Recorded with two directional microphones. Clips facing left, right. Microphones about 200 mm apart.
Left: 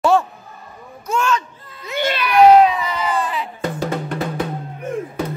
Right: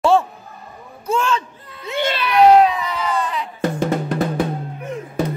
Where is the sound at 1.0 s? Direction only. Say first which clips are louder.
Even; 30° right (ahead or behind).